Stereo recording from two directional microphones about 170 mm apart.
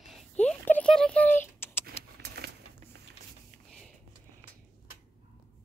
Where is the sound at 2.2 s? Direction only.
75° right (ahead or behind).